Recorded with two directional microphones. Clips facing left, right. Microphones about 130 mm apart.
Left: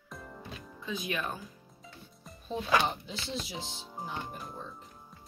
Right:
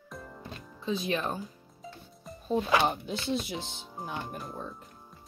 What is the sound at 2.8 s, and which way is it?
Speech, 55° right (ahead or behind).